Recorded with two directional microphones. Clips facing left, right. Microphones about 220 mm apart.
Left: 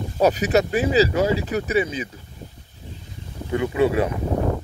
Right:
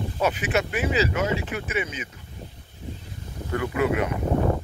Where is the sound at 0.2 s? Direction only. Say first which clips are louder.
Left 7 dB; 40° left (ahead or behind).